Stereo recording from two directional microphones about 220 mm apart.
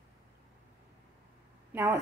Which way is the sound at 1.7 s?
10° right (ahead or behind).